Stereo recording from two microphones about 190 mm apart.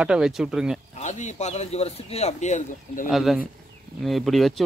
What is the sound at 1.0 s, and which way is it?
Speech, 40° left (ahead or behind).